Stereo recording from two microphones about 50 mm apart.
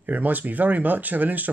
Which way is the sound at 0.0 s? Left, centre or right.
Right.